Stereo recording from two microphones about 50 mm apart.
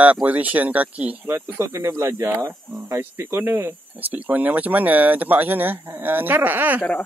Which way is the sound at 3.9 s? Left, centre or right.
Right.